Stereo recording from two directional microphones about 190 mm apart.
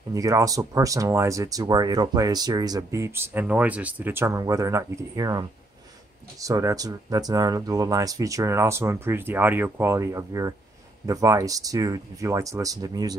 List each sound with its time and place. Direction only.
0.1 s speech: 20° right (ahead or behind)
6.4 s speech: 20° right (ahead or behind)